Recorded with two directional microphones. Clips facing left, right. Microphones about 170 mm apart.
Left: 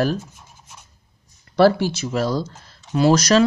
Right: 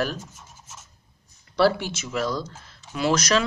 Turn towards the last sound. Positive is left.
turn(degrees=35)  # may be behind; listen again after turning